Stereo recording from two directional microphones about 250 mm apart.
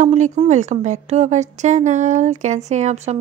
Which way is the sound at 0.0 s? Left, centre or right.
Right.